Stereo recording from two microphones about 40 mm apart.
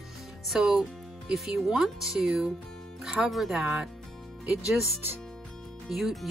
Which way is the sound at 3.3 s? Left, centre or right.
Centre.